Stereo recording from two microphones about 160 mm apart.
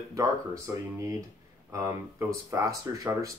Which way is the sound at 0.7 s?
15° right (ahead or behind).